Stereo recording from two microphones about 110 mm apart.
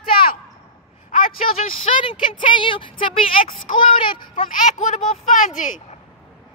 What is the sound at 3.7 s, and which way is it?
Speech, 75° left (ahead or behind).